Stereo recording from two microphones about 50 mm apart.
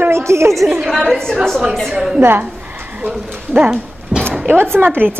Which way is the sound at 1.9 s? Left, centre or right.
Centre.